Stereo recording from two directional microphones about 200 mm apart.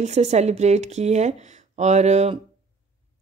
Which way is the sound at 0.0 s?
35° right (ahead or behind).